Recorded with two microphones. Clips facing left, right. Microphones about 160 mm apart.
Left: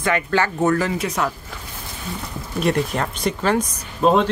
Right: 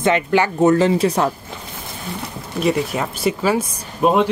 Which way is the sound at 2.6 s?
Centre (ahead or behind).